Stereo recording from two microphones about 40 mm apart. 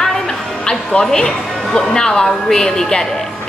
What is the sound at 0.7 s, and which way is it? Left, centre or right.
A woman's voice, centre.